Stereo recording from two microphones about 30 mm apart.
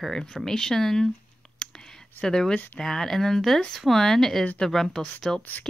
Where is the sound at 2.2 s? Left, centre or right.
Left.